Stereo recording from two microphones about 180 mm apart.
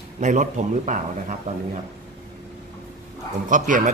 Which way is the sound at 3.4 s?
45° right (ahead or behind).